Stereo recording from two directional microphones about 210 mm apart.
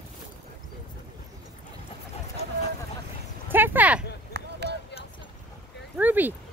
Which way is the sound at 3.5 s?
10° right (ahead or behind).